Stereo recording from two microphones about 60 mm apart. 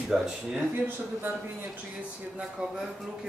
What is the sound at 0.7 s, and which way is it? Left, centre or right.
A man's voice, right.